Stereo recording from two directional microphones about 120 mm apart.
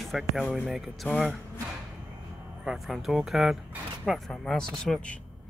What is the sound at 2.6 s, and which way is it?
Speech, 5° right (ahead or behind).